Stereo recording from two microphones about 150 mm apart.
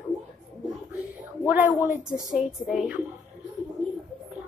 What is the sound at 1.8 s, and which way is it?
Speech, 10° right (ahead or behind).